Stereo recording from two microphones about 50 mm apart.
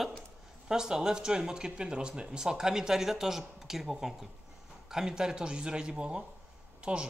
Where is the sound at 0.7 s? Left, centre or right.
Centre.